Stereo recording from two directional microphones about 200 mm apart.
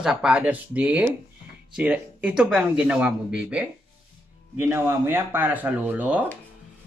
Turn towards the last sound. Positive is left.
turn(degrees=-10)  # may be behind; listen again after turning